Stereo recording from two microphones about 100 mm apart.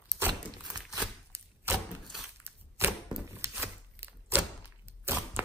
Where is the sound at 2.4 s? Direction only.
25° right (ahead or behind).